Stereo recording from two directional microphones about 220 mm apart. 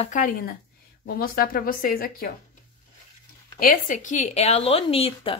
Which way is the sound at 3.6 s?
40° left (ahead or behind).